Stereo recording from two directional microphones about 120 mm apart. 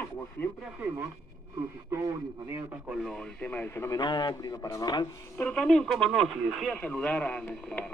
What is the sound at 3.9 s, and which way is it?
Speech, 35° left (ahead or behind).